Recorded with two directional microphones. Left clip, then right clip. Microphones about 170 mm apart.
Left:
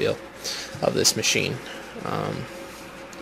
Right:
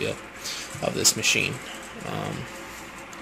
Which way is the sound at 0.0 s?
20° left (ahead or behind).